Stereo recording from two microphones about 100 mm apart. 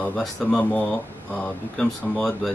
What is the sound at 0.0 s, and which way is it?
Speech, 10° left (ahead or behind).